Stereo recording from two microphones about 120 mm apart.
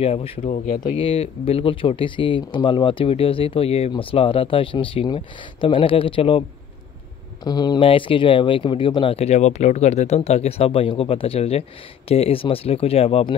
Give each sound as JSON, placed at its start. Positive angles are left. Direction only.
{"t": 0.0, "sound": "speech", "side_deg": 60}
{"t": 7.4, "sound": "speech", "side_deg": 35}
{"t": 7.8, "sound": "speech", "side_deg": 45}